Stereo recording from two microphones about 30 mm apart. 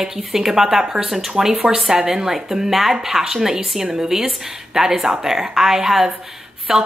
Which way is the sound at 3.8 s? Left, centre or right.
Centre.